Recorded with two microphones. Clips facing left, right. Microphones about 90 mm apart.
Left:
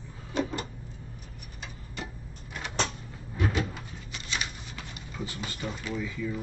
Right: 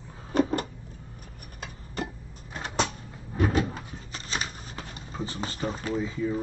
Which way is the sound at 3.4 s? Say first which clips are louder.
Right 4 dB; 40° right (ahead or behind).